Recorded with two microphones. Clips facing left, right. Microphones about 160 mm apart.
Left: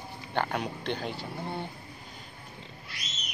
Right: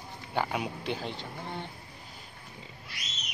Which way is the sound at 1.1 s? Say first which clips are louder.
Left 3 dB; 10° left (ahead or behind).